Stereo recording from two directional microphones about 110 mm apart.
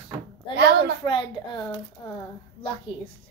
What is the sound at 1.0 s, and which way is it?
Speech, 45° left (ahead or behind).